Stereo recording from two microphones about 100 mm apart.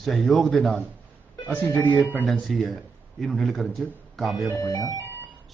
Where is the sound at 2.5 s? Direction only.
Centre (ahead or behind).